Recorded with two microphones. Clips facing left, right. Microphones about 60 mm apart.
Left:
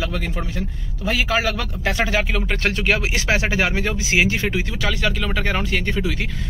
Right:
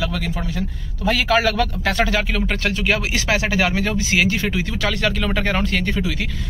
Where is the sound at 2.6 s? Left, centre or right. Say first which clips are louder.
Left 2 dB; left.